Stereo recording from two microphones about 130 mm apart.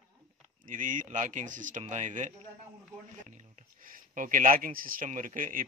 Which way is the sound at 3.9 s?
90° right.